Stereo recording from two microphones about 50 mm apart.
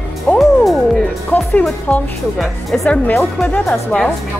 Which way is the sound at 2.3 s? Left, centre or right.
Centre.